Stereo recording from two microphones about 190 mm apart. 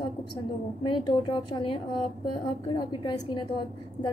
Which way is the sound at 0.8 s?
25° left (ahead or behind).